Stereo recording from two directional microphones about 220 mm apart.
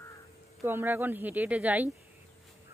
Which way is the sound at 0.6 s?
10° right (ahead or behind).